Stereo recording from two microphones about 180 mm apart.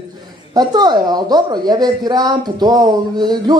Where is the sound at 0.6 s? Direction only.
25° right (ahead or behind).